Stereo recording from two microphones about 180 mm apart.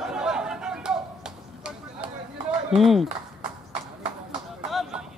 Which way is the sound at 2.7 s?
Centre (ahead or behind).